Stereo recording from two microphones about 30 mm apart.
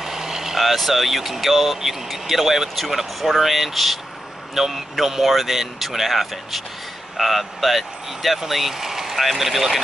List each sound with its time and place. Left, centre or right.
0.0 s vehicle: centre
0.6 s speech: centre